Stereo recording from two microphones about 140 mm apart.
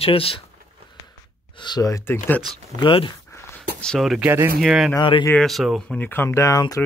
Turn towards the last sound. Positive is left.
turn(degrees=25)  # may be behind; listen again after turning